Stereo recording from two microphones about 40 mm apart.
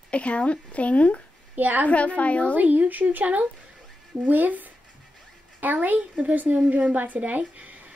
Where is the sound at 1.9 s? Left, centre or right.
Left.